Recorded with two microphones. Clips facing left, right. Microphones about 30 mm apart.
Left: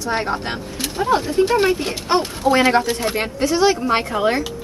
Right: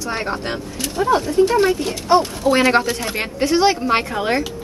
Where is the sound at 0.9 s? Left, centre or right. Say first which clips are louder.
Right 1 dB; left.